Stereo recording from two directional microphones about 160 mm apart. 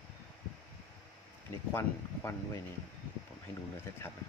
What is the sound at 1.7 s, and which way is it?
Speech, 15° left (ahead or behind).